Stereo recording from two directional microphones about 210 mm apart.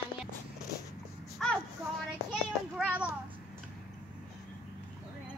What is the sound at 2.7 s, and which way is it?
Speech, 5° right (ahead or behind).